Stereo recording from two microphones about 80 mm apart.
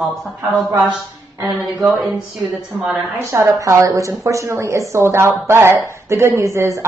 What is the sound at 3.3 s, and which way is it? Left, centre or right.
A woman's voice, right.